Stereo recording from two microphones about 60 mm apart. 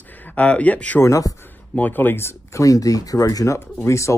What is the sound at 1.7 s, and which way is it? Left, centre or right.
Speech, left.